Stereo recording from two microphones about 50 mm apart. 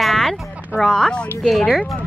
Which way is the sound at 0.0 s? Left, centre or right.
Centre.